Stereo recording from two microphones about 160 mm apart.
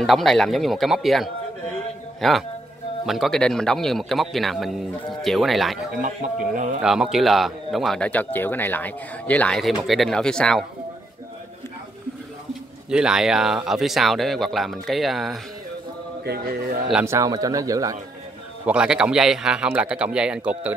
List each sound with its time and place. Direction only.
0.0 s speech: centre (ahead or behind)
5.9 s speech: 55° right (ahead or behind)
6.8 s speech: 5° right (ahead or behind)
12.9 s speech: 5° right (ahead or behind)
16.3 s speech: 70° right (ahead or behind)
17.0 s speech: 20° right (ahead or behind)
18.7 s speech: 5° right (ahead or behind)